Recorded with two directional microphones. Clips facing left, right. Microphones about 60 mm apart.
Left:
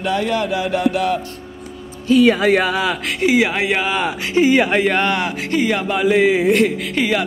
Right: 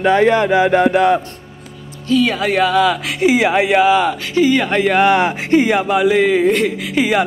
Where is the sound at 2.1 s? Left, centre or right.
Left.